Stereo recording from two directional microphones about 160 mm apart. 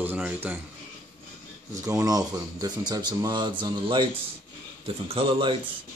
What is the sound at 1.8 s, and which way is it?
A man's voice, 20° right (ahead or behind).